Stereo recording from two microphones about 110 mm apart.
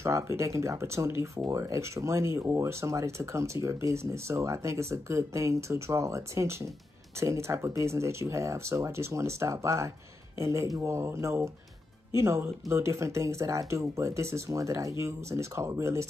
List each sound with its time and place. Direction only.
0.0 s speech: 25° right (ahead or behind)